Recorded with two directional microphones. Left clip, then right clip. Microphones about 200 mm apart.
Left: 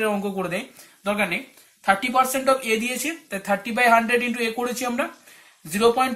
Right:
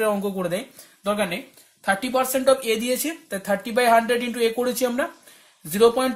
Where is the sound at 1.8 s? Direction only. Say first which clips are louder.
Left 3 dB; 55° right (ahead or behind).